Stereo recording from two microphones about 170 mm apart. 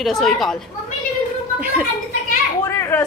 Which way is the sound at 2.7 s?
15° left (ahead or behind).